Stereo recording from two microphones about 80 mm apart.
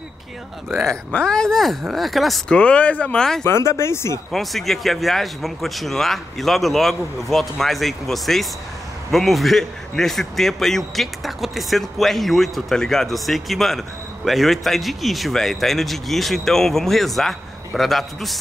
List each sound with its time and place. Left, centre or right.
0.7 s speech: centre
2.4 s speech: centre
3.4 s speech: left
4.3 s speech: centre